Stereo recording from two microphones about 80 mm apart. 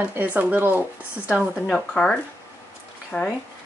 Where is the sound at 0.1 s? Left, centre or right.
Right.